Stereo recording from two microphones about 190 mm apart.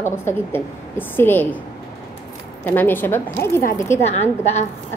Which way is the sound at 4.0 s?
35° left (ahead or behind).